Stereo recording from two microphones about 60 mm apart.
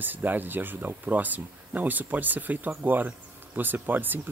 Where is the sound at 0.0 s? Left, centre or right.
Right.